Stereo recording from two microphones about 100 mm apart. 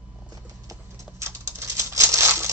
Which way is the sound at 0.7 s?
30° right (ahead or behind).